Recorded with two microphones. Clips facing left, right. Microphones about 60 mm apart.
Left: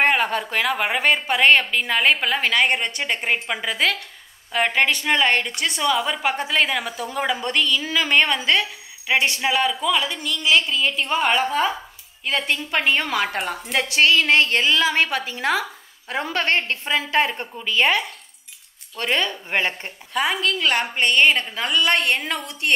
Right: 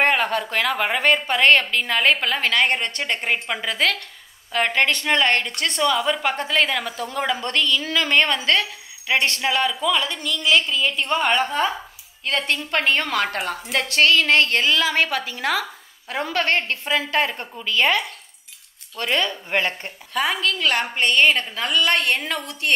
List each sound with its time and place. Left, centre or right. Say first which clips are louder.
0.0 s a woman's voice: even; centre